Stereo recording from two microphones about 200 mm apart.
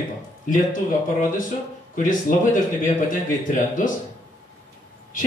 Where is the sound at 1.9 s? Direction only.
40° left (ahead or behind).